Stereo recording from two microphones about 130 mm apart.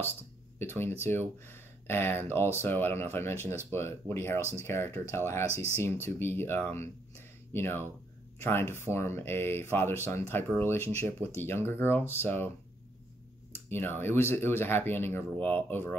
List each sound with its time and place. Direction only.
0.6 s speech: 15° left (ahead or behind)
4.4 s speech: 20° right (ahead or behind)
4.6 s speech: 20° left (ahead or behind)
13.5 s speech: 15° left (ahead or behind)